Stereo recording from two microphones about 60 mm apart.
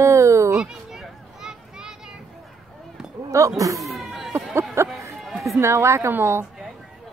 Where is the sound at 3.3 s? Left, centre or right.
Right.